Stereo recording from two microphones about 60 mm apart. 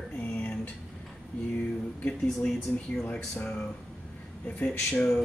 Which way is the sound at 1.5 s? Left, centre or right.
Left.